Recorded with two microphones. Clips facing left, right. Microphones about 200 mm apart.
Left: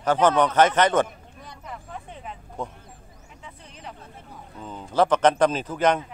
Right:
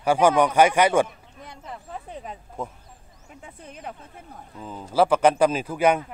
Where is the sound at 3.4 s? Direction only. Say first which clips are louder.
Right 4 dB; 50° right (ahead or behind).